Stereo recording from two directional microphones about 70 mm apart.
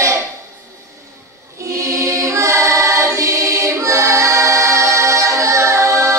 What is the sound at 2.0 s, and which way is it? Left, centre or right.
Choir, right.